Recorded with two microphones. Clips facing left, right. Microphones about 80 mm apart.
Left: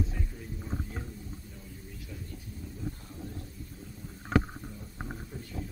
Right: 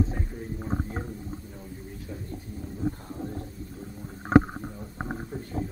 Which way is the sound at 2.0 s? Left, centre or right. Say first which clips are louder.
Right 7 dB; right.